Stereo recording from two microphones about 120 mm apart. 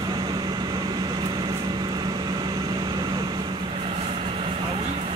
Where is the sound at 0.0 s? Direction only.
35° right (ahead or behind).